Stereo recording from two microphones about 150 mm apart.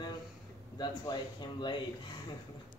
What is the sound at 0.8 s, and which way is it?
Speech, 30° left (ahead or behind).